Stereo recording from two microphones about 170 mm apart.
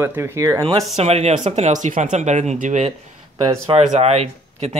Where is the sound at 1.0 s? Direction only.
40° right (ahead or behind).